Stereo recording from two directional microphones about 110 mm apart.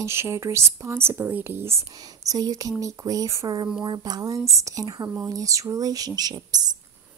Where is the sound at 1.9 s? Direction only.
35° right (ahead or behind).